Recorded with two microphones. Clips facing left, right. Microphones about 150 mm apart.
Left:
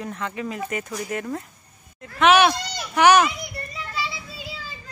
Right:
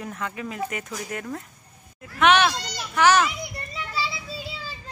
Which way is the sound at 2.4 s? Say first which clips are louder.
Left 4 dB; 15° left (ahead or behind).